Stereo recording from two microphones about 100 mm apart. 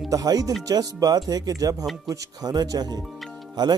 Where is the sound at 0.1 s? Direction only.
40° right (ahead or behind).